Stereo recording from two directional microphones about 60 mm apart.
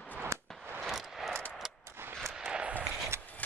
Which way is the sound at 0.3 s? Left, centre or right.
Right.